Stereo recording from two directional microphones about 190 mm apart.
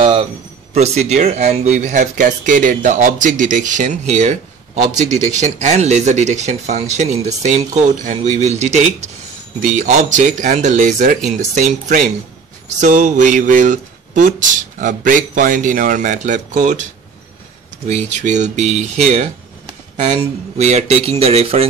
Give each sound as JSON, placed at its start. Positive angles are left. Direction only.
{"t": 0.0, "sound": "a man's voice", "side_deg": -30}
{"t": 17.8, "sound": "speech", "side_deg": -40}